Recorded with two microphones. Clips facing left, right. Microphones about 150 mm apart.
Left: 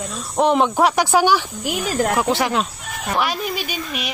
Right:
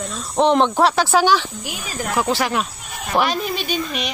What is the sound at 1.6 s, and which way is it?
Speech, 55° left (ahead or behind).